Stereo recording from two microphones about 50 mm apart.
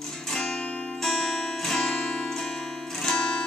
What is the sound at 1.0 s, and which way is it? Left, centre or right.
Music, centre.